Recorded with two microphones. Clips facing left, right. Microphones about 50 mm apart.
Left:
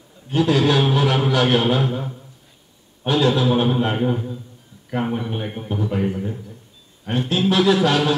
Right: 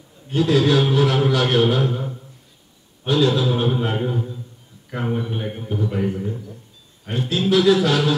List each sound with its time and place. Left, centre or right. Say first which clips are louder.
0.4 s a man's voice: even; left
3.1 s speech: left 1 dB; left
5.2 s a man's voice: even; centre
5.7 s speech: left 1 dB; left
6.0 s a man's voice: even; centre
7.1 s speech: even; left